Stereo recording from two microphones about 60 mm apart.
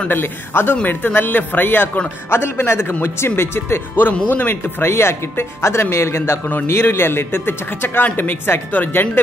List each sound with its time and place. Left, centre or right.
0.1 s speech: left
2.3 s speech: left